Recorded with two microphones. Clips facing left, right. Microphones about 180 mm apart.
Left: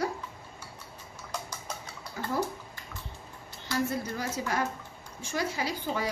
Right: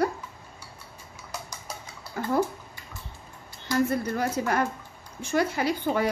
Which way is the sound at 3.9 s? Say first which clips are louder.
Right 6 dB; 60° right (ahead or behind).